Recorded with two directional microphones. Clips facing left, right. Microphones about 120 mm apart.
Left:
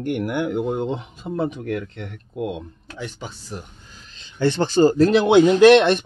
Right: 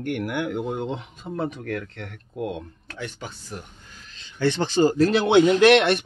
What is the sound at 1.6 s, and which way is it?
Speech, 10° left (ahead or behind).